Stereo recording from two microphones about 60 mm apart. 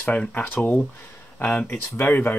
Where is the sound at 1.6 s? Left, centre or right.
Left.